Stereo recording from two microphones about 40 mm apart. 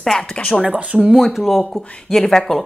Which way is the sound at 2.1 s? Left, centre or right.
Centre.